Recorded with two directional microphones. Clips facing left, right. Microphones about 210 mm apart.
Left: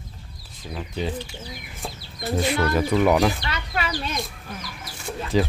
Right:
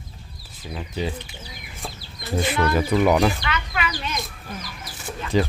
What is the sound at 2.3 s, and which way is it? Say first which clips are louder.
Speech: even; centre (ahead or behind).